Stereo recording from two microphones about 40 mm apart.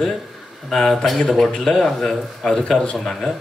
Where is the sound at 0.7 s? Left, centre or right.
Centre.